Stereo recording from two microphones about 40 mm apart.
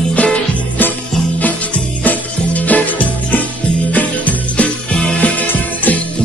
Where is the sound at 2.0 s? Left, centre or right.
Left.